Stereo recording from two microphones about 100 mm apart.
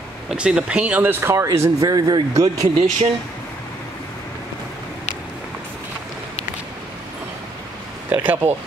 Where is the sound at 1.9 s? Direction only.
40° right (ahead or behind).